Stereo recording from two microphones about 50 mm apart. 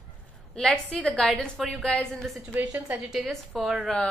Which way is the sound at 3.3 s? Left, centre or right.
Centre.